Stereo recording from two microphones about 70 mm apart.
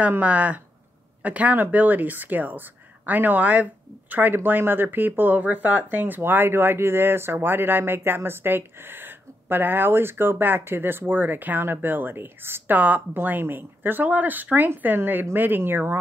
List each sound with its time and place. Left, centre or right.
0.2 s speech: right
12.7 s speech: right